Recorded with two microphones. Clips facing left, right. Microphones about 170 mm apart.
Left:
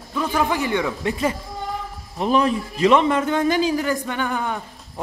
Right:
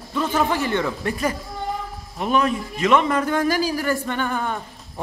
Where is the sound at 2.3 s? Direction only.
30° left (ahead or behind).